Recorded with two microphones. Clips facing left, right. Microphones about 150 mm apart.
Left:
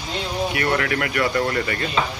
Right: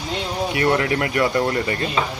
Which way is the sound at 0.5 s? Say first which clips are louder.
Right 5 dB; 25° right (ahead or behind).